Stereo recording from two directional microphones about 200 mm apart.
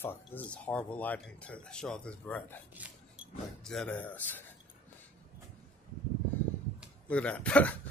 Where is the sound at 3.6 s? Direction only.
5° left (ahead or behind).